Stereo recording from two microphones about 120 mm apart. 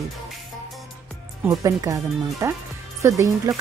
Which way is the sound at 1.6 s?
30° right (ahead or behind).